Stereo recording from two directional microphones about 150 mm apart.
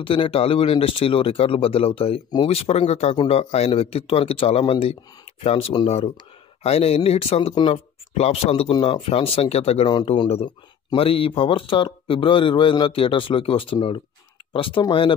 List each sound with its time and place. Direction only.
0.0 s speech: 35° left (ahead or behind)